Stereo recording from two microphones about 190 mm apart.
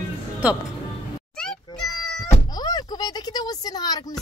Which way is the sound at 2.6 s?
20° left (ahead or behind).